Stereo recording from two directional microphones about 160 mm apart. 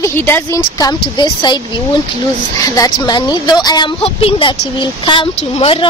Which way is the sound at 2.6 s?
20° left (ahead or behind).